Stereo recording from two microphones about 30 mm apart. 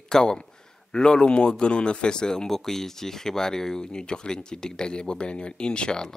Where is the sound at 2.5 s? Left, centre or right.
Centre; by 6.0 s left.